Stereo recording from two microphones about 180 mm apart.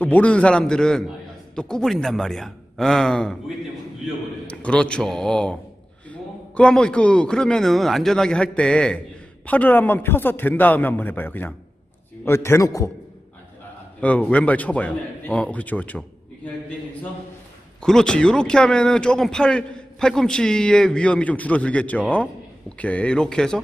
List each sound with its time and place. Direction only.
0.0 s a man's voice: 10° left (ahead or behind)
14.0 s a man's voice: 5° left (ahead or behind)
17.8 s a man's voice: 5° left (ahead or behind)